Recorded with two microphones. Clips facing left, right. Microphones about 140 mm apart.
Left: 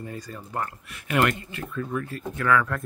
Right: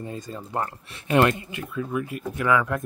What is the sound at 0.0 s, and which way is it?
Speech, 25° right (ahead or behind).